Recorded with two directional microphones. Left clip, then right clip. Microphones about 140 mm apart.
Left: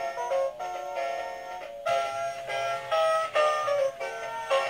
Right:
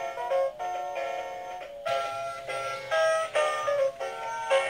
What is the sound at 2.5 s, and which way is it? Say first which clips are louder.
Music: left 1 dB; 35° right (ahead or behind).